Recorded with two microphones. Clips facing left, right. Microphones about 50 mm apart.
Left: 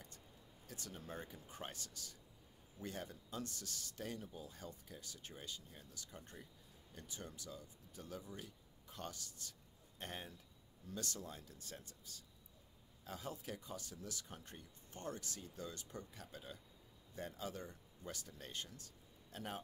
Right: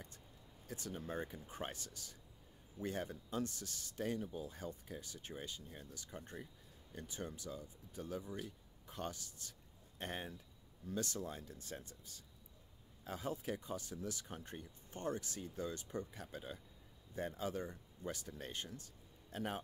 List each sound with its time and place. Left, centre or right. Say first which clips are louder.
0.7 s speech: right 6 dB; right
2.8 s speech: right 6 dB; right
13.0 s speech: right 5 dB; right